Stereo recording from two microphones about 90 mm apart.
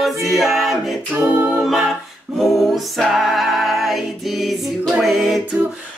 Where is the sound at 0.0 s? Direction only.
Centre (ahead or behind).